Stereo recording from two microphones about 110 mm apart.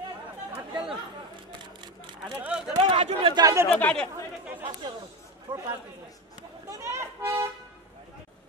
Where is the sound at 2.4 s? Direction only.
5° right (ahead or behind).